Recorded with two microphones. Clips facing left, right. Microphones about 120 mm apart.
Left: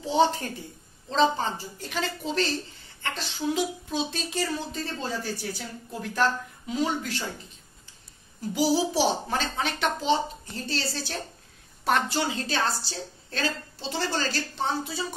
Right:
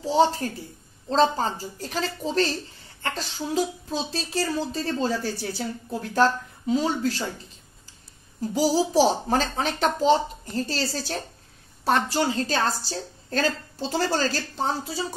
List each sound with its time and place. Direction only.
0.0 s speech: 30° right (ahead or behind)
8.4 s speech: 40° right (ahead or behind)